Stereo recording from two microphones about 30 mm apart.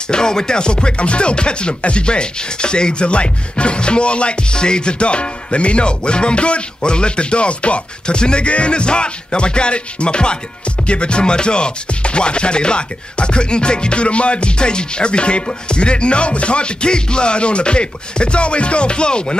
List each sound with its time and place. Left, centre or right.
0.1 s music: left